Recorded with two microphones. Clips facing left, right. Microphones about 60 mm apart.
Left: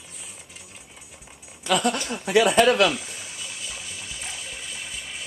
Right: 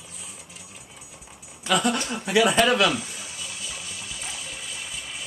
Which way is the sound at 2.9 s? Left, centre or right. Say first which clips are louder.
Right 2 dB; centre.